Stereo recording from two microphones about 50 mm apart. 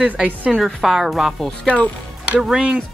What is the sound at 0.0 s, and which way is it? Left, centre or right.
Speech, right.